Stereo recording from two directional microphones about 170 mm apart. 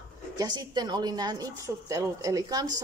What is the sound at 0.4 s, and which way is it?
Speech, 25° right (ahead or behind).